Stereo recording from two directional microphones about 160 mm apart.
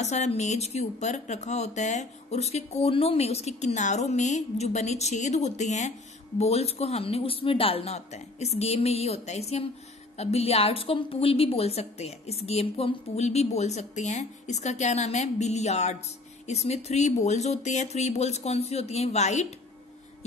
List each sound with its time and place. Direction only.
0.0 s a woman's voice: 45° left (ahead or behind)